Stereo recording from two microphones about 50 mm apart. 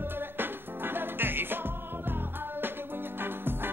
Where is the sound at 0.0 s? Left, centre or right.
Right.